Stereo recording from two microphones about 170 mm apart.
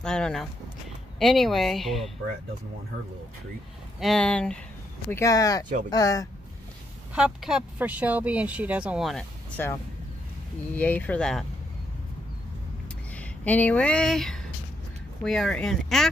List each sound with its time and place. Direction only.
0.0 s speech: 5° left (ahead or behind)
4.0 s speech: 5° left (ahead or behind)
5.1 s speech: 20° left (ahead or behind)
7.2 s speech: 5° right (ahead or behind)
9.6 s speech: 10° left (ahead or behind)
10.8 s speech: 10° left (ahead or behind)
13.1 s speech: 10° left (ahead or behind)